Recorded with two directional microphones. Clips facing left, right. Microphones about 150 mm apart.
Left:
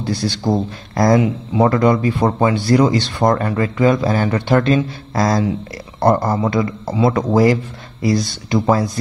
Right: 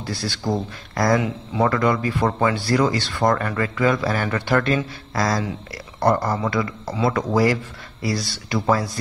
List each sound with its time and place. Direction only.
0.0 s speech: 20° left (ahead or behind)